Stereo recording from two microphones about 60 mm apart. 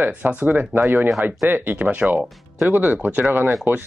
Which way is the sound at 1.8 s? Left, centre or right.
Right.